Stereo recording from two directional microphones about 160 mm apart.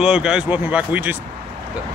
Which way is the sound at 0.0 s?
5° right (ahead or behind).